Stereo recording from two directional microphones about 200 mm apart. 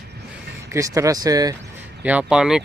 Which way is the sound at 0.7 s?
15° right (ahead or behind).